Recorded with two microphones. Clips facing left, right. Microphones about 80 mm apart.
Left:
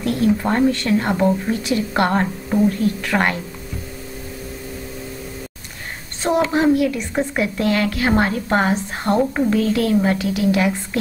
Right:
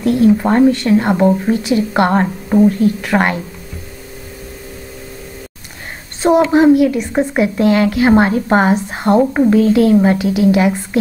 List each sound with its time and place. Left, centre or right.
0.0 s speech: centre
2.5 s speech: centre
6.5 s speech: centre